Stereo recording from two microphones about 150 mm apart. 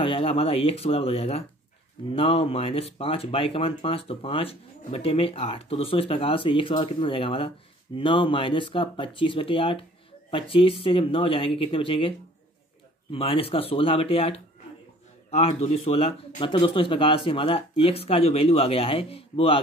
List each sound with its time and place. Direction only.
0.0 s speech: 35° left (ahead or behind)
13.1 s a man's voice: 40° left (ahead or behind)